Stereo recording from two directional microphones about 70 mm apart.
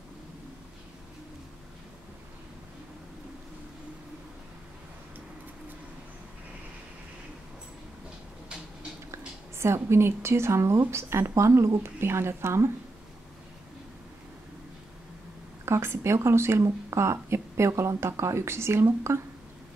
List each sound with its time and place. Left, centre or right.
9.1 s speech: right
15.6 s speech: right